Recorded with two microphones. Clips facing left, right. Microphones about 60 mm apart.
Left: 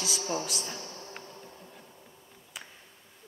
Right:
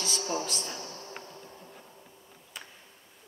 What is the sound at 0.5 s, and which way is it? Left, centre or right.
Speech, centre.